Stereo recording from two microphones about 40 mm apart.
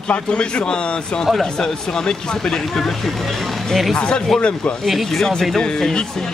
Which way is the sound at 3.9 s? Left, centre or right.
Left.